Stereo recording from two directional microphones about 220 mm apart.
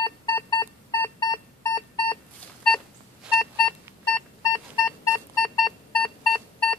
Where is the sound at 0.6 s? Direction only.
20° left (ahead or behind).